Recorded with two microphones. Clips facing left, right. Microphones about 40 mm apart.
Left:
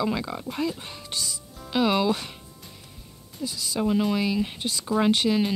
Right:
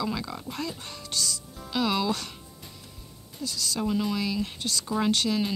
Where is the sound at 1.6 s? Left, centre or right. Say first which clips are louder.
Left 4 dB; centre.